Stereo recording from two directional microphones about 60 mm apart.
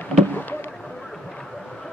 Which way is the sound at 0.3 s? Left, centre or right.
Left.